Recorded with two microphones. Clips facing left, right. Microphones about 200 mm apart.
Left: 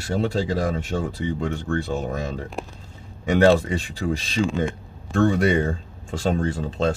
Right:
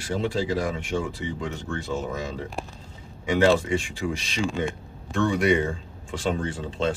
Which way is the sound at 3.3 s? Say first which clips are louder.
Left 3 dB; 40° left (ahead or behind).